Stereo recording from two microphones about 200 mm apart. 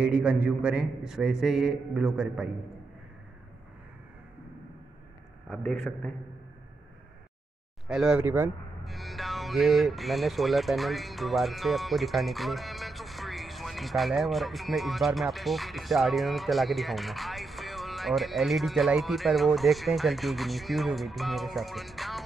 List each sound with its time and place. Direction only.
0.0 s speech: 5° right (ahead or behind)
5.5 s speech: centre (ahead or behind)
7.9 s speech: 5° right (ahead or behind)